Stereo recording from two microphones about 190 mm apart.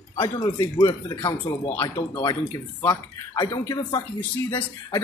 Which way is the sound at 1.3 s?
15° left (ahead or behind).